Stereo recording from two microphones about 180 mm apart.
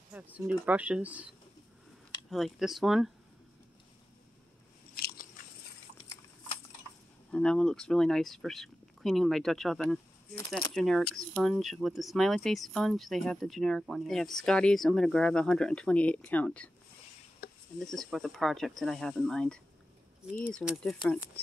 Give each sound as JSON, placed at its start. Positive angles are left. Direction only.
{"t": 0.1, "sound": "speech", "side_deg": -10}
{"t": 2.3, "sound": "speech", "side_deg": 0}
{"t": 5.0, "sound": "biting", "side_deg": 55}
{"t": 7.2, "sound": "speech", "side_deg": 5}
{"t": 17.7, "sound": "speech", "side_deg": 0}